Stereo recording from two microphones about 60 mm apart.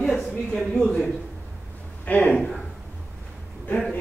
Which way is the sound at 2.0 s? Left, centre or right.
Left.